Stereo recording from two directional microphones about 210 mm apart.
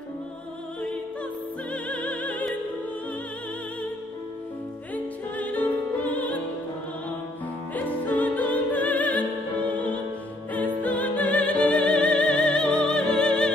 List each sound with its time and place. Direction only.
1.7 s music: 5° left (ahead or behind)
4.9 s music: 5° left (ahead or behind)
7.7 s music: 5° left (ahead or behind)